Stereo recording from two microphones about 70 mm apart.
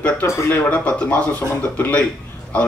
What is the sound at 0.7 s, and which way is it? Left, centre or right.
Speech, centre.